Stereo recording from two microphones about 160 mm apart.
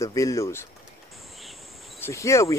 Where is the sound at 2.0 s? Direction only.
20° left (ahead or behind).